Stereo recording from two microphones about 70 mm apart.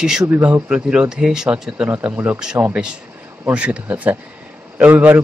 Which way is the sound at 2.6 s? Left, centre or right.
Right.